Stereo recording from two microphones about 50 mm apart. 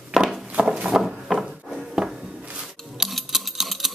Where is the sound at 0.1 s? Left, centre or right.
Centre.